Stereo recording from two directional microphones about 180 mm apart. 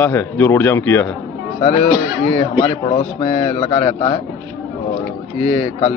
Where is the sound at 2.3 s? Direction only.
30° left (ahead or behind).